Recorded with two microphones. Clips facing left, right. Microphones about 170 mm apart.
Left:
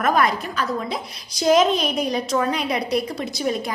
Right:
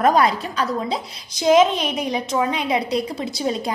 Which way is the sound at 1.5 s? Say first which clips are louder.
Right 2 dB; 20° right (ahead or behind).